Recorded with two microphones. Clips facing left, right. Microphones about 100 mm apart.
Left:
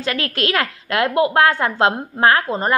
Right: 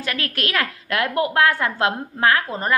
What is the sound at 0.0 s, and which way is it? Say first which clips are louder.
A woman's voice: left 4 dB; 25° left (ahead or behind).